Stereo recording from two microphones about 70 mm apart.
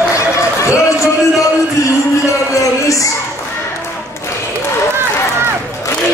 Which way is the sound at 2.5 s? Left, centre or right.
Left.